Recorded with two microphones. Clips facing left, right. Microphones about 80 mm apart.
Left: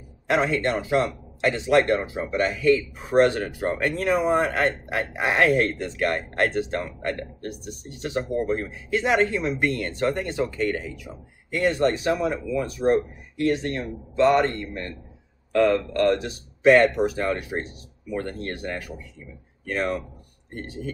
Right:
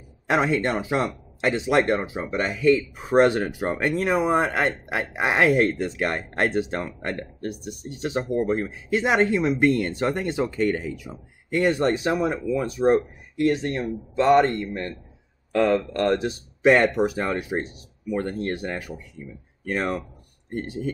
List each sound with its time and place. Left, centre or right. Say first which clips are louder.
0.3 s speech: right 1 dB; centre